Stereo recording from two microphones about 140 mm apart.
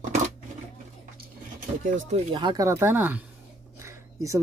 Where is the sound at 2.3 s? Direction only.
35° right (ahead or behind).